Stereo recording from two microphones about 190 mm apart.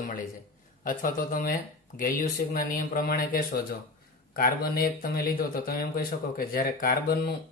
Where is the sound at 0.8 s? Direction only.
45° left (ahead or behind).